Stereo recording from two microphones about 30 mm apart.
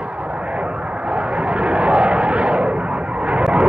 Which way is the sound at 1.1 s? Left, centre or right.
Right.